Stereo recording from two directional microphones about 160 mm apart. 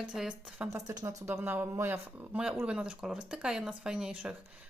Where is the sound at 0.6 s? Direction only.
20° right (ahead or behind).